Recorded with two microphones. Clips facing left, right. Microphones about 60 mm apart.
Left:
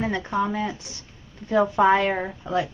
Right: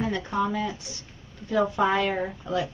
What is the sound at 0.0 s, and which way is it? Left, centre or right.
Speech, left.